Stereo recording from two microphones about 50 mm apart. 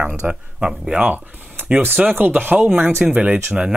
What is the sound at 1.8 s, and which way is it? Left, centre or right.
Speech, right.